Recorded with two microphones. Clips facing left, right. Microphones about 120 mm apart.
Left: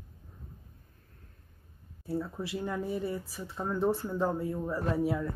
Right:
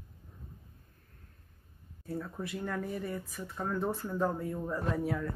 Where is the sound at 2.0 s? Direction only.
30° left (ahead or behind).